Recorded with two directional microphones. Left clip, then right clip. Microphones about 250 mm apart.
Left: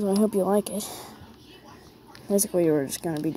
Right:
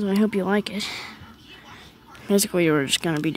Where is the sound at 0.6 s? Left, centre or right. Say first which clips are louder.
Right 4 dB; centre.